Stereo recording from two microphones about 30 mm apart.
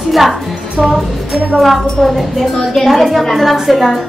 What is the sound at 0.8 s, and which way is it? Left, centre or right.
Speech, centre.